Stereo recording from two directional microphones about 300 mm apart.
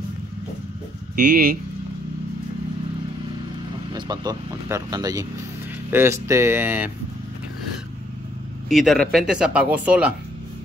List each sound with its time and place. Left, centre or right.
1.1 s speech: right
3.9 s speech: centre
8.6 s speech: centre